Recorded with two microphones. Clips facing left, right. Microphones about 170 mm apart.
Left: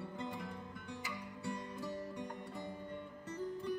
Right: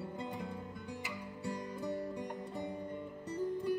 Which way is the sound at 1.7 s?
20° right (ahead or behind).